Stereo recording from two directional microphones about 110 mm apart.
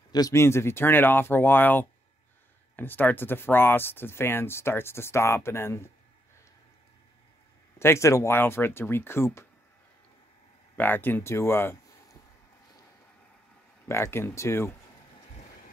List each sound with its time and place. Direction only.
0.1 s speech: 30° left (ahead or behind)
7.8 s speech: 25° left (ahead or behind)
10.8 s speech: 15° left (ahead or behind)
13.8 s speech: 25° left (ahead or behind)